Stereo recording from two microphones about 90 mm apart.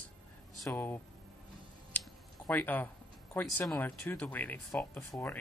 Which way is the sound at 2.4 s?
20° left (ahead or behind).